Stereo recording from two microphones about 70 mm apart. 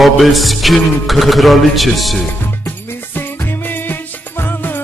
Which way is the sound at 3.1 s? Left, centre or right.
Left.